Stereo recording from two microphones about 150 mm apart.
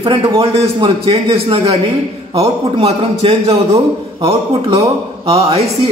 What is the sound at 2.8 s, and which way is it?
A man's voice, 35° right (ahead or behind).